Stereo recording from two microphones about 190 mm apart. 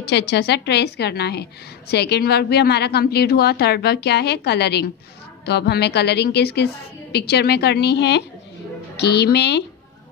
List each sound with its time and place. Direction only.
0.0 s a woman's voice: 60° left (ahead or behind)